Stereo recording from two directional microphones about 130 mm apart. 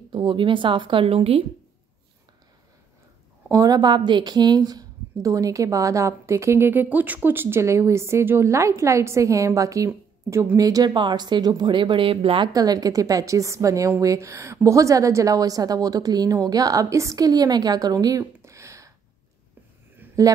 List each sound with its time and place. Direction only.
0.1 s speech: 40° right (ahead or behind)
3.4 s speech: 25° right (ahead or behind); by 12.4 s 45° right (ahead or behind)
12.5 s speech: 30° right (ahead or behind)